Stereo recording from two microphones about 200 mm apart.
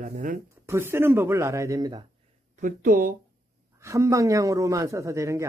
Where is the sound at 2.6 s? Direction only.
40° right (ahead or behind).